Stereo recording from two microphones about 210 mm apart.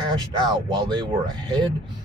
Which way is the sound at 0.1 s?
20° right (ahead or behind).